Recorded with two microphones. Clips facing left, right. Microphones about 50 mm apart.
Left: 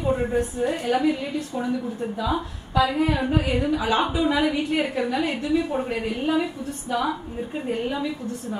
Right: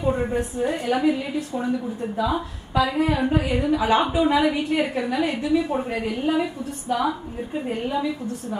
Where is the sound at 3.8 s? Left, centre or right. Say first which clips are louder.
Right 3 dB; right.